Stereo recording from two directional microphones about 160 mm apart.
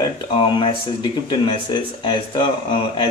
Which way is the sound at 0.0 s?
30° left (ahead or behind).